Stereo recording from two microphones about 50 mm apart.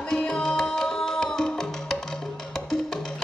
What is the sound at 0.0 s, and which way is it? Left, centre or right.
Music, centre.